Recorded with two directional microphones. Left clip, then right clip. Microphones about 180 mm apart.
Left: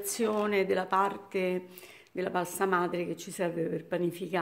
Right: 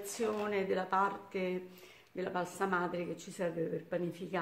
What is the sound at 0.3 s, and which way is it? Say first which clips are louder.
Speech: left 7 dB; 50° left (ahead or behind).